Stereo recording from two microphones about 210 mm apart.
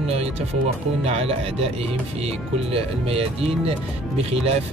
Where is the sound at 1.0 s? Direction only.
30° right (ahead or behind).